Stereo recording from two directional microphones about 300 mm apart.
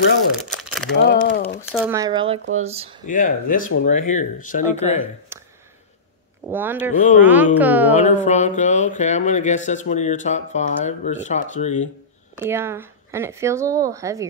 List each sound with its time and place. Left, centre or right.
0.5 s crumpling: centre
0.9 s crumpling: left
1.7 s speech: centre
3.1 s speech: left
5.3 s a sound: centre
6.4 s a woman's voice: centre
8.0 s speech: left
12.4 s speech: centre